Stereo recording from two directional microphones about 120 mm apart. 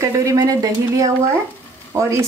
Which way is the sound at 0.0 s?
25° right (ahead or behind).